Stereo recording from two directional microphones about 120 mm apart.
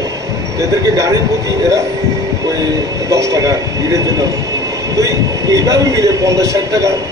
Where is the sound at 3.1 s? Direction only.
25° right (ahead or behind).